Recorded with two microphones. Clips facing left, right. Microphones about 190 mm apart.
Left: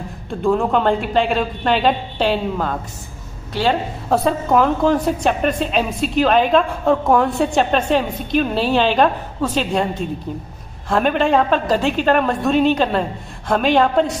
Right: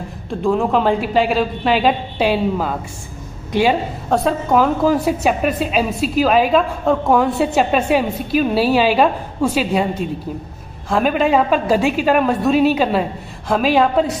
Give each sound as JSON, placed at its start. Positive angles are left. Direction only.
{"t": 0.3, "sound": "a woman's voice", "side_deg": 0}
{"t": 3.5, "sound": "a woman's voice", "side_deg": -15}
{"t": 4.1, "sound": "a woman's voice", "side_deg": 0}
{"t": 10.9, "sound": "a woman's voice", "side_deg": 0}